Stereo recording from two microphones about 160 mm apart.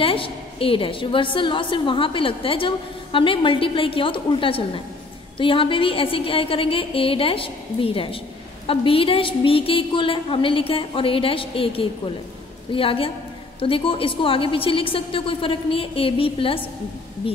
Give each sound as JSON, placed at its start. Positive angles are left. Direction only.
{"t": 0.0, "sound": "a woman's voice", "side_deg": 35}